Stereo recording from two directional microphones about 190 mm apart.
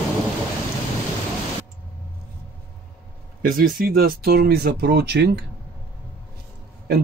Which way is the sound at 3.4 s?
50° right (ahead or behind).